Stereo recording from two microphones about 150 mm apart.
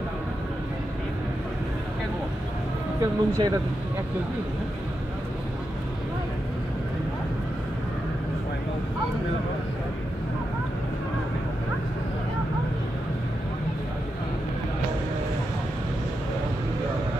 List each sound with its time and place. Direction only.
3.0 s speech: 25° right (ahead or behind)